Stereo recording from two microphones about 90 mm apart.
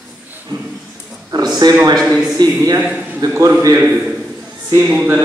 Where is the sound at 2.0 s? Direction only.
5° right (ahead or behind).